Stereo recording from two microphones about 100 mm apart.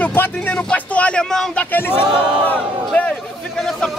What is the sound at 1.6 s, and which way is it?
Speech, 20° left (ahead or behind).